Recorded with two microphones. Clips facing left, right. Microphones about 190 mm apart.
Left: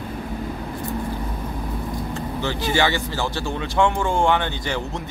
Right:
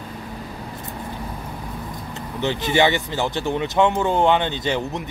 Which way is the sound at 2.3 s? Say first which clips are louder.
Right 3 dB; 20° right (ahead or behind).